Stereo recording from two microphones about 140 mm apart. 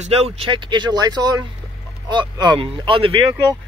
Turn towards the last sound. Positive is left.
turn(degrees=-35)  # may be behind; listen again after turning